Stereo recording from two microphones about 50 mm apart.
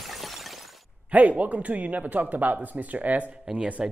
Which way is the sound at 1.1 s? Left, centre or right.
Right.